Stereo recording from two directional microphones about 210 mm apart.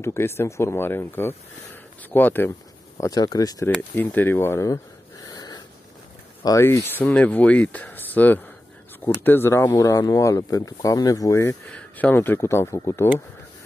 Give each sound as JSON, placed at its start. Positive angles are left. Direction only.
{"t": 0.0, "sound": "speech", "side_deg": 10}
{"t": 5.2, "sound": "dog", "side_deg": 15}
{"t": 6.4, "sound": "speech", "side_deg": 15}